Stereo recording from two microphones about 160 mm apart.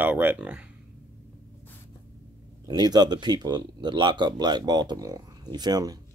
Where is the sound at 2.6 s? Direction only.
25° right (ahead or behind).